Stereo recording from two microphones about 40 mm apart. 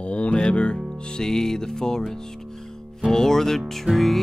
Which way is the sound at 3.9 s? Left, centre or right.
Centre.